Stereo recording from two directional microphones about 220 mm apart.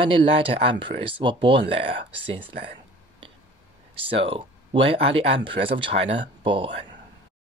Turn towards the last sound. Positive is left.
turn(degrees=-25)  # may be behind; listen again after turning